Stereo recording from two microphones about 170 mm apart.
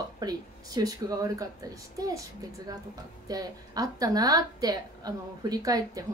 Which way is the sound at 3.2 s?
20° right (ahead or behind).